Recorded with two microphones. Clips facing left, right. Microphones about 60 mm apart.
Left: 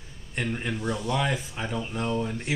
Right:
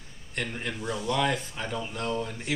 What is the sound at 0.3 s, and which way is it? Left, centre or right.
Speech, centre.